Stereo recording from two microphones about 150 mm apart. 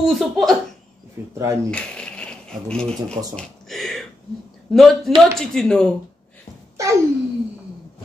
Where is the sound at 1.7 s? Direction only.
5° left (ahead or behind).